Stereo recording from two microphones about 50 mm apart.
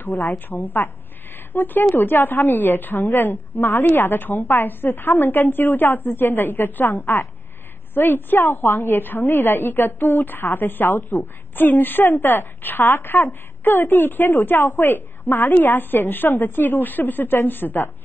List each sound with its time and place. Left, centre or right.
0.0 s a woman's voice: left